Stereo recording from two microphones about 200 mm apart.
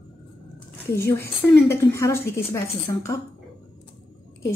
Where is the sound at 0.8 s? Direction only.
15° left (ahead or behind).